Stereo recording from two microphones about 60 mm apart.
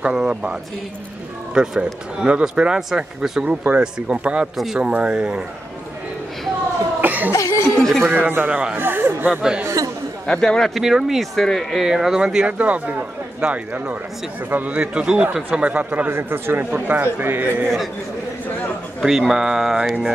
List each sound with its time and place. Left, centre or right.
0.0 s speech: centre
3.4 s speech: right
7.0 s cough: right
7.3 s chuckle: left
8.1 s speech: right
9.3 s speech: centre
10.2 s a man's voice: centre
10.8 s speech: centre
11.3 s speech: centre
11.8 s speech: centre; by 14.8 s right
14.8 s speech: centre
16.1 s a man's voice: right
19.0 s speech: centre